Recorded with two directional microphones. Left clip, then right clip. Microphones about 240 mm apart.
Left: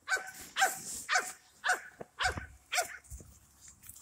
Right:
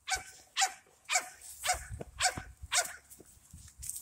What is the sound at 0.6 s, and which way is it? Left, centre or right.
Dog, right.